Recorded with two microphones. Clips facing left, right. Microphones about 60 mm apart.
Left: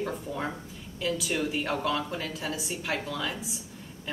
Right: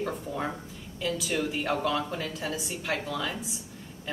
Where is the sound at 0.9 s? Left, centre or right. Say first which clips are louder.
Even; centre.